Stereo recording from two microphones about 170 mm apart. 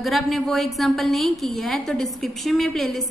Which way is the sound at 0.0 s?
Centre (ahead or behind).